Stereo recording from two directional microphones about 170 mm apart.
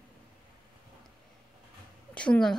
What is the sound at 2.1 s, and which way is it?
Speech, 5° left (ahead or behind).